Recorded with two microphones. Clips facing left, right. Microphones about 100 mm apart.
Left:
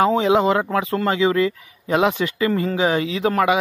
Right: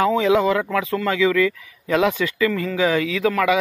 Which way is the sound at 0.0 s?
30° left (ahead or behind).